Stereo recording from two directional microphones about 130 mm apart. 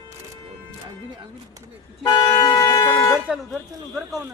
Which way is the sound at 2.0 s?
30° left (ahead or behind).